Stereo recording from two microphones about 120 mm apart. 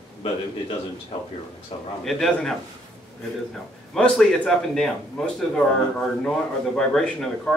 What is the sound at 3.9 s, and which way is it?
A man's voice, 10° left (ahead or behind).